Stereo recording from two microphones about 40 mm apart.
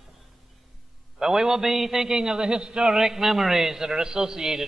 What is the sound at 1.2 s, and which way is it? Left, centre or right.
Speech, centre.